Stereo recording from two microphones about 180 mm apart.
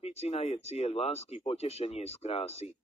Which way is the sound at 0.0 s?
35° left (ahead or behind).